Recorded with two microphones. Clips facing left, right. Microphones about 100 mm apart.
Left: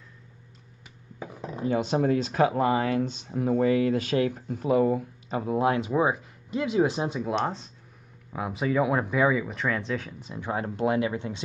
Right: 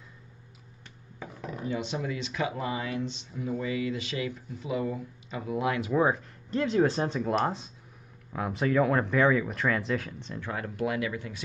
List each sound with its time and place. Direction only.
1.4 s a sound: 25° left (ahead or behind)
1.7 s speech: 45° left (ahead or behind)
5.4 s speech: 35° left (ahead or behind)
5.9 s speech: 10° left (ahead or behind)
10.4 s speech: 25° left (ahead or behind)